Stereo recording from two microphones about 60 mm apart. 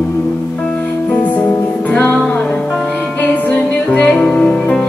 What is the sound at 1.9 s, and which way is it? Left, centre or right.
Music, left.